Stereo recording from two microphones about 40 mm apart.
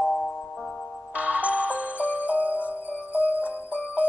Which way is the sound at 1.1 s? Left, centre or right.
Right.